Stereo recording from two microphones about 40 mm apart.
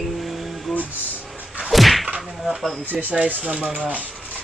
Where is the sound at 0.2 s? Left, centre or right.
Centre.